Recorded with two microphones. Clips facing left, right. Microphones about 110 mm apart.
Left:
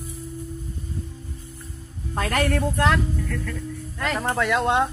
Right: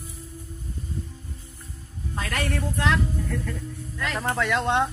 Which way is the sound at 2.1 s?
55° left (ahead or behind).